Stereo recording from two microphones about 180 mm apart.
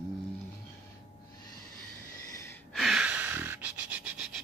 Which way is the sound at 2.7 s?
Centre (ahead or behind).